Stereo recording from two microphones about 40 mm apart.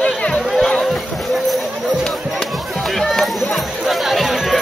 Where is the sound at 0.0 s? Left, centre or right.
Left.